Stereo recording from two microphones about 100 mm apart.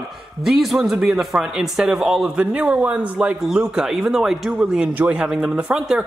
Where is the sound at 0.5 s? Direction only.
5° right (ahead or behind).